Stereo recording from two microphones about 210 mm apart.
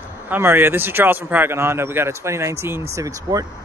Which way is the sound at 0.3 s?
10° right (ahead or behind).